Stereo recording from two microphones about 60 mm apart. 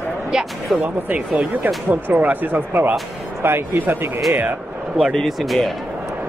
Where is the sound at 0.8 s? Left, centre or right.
Right.